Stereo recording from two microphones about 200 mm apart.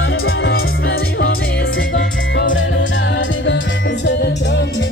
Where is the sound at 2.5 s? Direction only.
65° left (ahead or behind).